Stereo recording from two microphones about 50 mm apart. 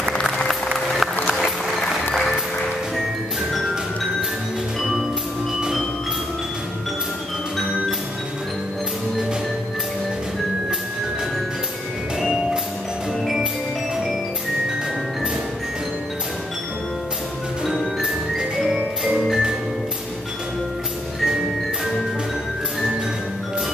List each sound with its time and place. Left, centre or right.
0.5 s music: centre
18.4 s music: centre
19.1 s music: centre